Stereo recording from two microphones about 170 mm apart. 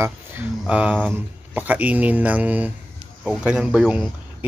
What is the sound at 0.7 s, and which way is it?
Speech, 5° right (ahead or behind).